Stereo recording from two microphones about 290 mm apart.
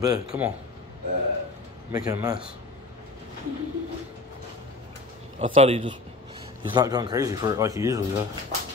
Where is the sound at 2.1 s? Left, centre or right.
Centre.